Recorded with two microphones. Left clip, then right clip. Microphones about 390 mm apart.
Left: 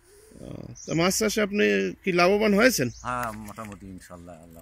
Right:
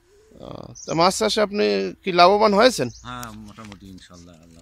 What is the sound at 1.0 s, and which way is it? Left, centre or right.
Speech, centre.